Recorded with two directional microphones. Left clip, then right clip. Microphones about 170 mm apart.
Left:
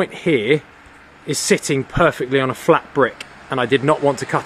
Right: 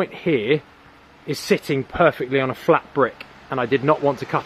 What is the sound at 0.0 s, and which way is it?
Speech, 10° left (ahead or behind).